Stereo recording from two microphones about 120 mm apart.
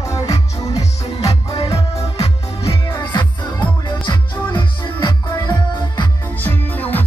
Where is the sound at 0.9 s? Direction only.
55° left (ahead or behind).